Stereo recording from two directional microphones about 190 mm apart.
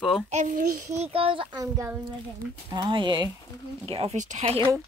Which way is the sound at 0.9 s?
30° right (ahead or behind).